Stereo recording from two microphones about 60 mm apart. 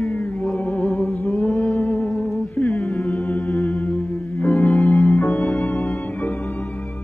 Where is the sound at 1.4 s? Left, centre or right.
Left.